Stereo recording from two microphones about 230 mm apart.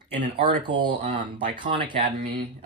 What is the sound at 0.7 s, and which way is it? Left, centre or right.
Speech, right.